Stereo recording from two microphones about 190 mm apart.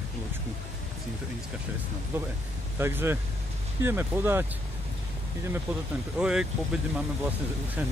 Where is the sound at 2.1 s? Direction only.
10° right (ahead or behind).